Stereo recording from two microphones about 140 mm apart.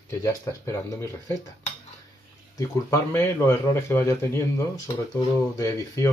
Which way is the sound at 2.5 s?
20° left (ahead or behind).